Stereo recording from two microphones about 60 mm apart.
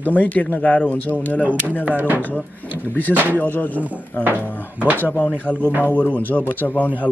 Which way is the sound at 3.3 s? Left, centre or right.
Left.